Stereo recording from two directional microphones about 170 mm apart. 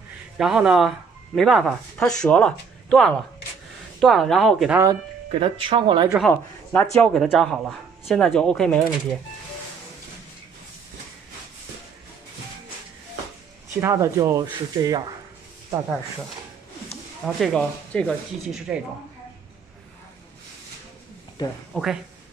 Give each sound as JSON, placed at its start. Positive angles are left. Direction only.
{"t": 0.4, "sound": "speech", "side_deg": -5}
{"t": 5.3, "sound": "speech", "side_deg": -30}
{"t": 6.1, "sound": "a man's voice", "side_deg": 5}
{"t": 13.7, "sound": "speech", "side_deg": -15}
{"t": 17.4, "sound": "speech", "side_deg": 0}
{"t": 21.4, "sound": "speech", "side_deg": 25}
{"t": 21.7, "sound": "speech", "side_deg": 5}